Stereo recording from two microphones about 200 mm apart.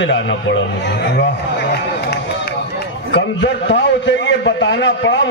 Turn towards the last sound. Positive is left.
turn(degrees=60)  # may be behind; listen again after turning